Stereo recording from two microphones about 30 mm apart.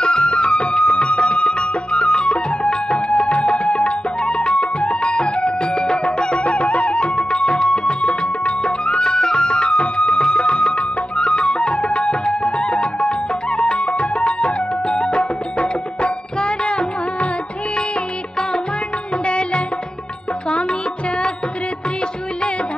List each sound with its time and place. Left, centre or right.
0.0 s music: left
7.2 s music: left
7.8 s music: left
19.2 s music: left